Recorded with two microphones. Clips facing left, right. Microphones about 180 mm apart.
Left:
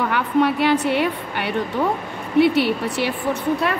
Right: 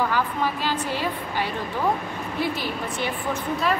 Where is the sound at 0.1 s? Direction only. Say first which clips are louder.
Left 6 dB; 70° left (ahead or behind).